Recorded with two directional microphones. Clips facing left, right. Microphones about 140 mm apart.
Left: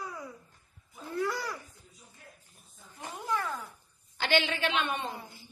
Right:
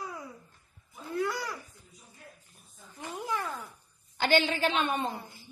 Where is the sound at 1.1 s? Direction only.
20° right (ahead or behind).